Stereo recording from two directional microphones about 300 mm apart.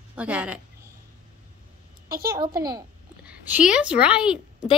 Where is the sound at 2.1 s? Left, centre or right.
Right.